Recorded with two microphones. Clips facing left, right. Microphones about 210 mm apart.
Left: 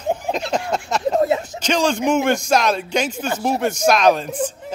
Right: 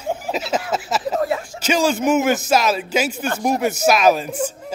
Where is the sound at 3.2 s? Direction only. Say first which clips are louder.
Right 1 dB; 5° left (ahead or behind).